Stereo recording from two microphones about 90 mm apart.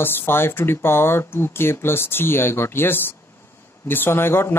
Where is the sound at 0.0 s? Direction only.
25° left (ahead or behind).